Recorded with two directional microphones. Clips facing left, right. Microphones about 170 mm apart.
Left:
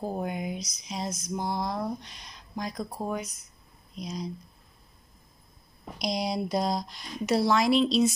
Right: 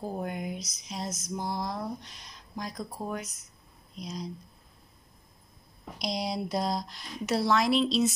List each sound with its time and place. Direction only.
0.2 s a sound: 5° left (ahead or behind)
0.6 s speech: 5° right (ahead or behind)
1.3 s speech: 25° left (ahead or behind)
1.6 s speech: centre (ahead or behind)
5.9 s speech: centre (ahead or behind)